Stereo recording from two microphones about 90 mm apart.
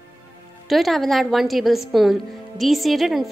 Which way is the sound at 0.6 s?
Centre (ahead or behind).